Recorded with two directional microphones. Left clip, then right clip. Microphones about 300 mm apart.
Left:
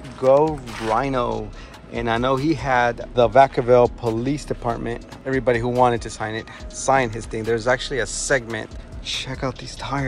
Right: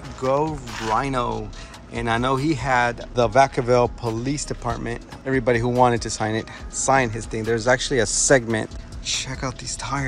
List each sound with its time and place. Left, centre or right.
0.2 s speech: centre
9.0 s speech: centre